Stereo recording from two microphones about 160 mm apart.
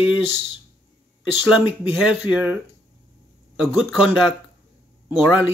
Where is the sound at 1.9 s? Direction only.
5° right (ahead or behind).